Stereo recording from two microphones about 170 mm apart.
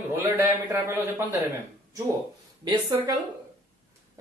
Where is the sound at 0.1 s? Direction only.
10° right (ahead or behind).